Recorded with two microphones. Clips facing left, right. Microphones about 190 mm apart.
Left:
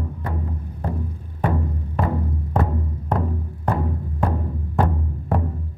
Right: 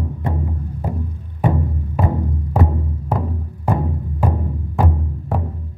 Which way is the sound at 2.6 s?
5° right (ahead or behind).